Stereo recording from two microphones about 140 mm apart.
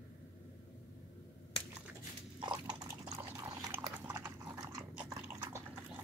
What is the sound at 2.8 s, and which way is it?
Liquid, 20° right (ahead or behind).